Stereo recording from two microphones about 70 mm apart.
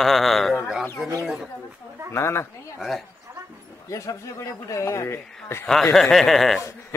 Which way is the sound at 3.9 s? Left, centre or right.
Left.